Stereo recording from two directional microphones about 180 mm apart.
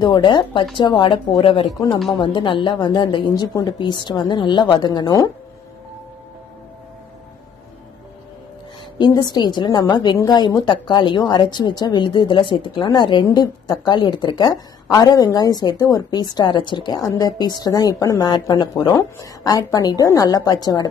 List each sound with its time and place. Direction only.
0.0 s a woman's voice: 25° left (ahead or behind)
8.9 s a woman's voice: 25° left (ahead or behind)